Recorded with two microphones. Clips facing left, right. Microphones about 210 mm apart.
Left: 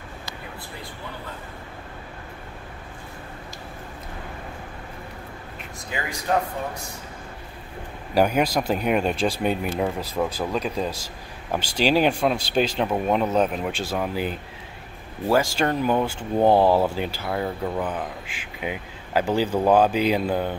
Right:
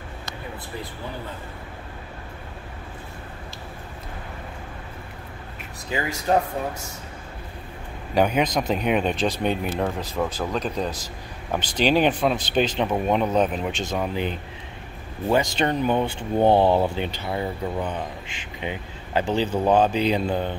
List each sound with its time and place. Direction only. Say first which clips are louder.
6.3 s speech: right 2 dB; 30° right (ahead or behind)
8.1 s speech: left 1 dB; 5° left (ahead or behind)
12.5 s speech: even; centre (ahead or behind)
15.3 s speech: even; centre (ahead or behind)